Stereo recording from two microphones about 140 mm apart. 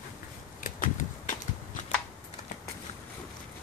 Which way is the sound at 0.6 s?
70° left (ahead or behind).